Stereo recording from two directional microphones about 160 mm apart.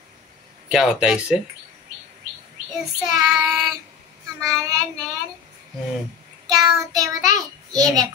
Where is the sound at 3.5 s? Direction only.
Centre (ahead or behind).